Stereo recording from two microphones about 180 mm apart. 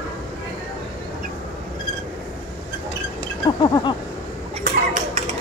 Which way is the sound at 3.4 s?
25° left (ahead or behind).